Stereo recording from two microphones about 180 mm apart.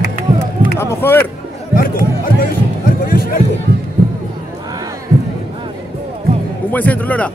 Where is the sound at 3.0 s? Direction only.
55° left (ahead or behind).